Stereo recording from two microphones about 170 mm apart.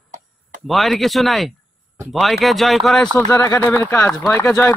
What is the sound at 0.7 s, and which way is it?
A man's voice, centre (ahead or behind).